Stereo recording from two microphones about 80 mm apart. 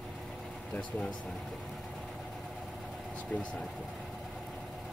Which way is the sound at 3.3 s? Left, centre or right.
Centre.